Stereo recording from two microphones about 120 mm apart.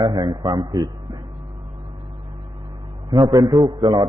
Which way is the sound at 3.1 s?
30° right (ahead or behind).